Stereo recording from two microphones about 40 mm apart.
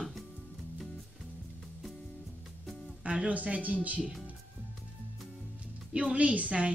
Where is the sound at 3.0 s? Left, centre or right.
Right.